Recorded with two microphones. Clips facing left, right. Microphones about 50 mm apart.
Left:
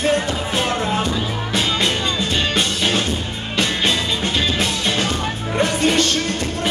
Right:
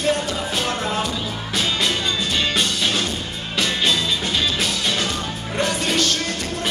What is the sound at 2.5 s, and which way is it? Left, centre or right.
Music, centre.